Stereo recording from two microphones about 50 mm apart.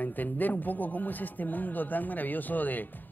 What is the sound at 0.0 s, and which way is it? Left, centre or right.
A woman's voice, left.